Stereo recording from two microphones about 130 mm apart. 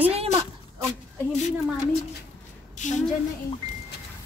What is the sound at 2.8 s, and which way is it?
Speech, 65° left (ahead or behind).